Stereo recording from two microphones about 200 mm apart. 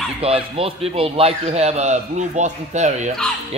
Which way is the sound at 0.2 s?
30° right (ahead or behind).